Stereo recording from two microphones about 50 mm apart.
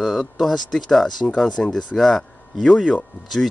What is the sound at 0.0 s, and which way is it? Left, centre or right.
Speech, centre.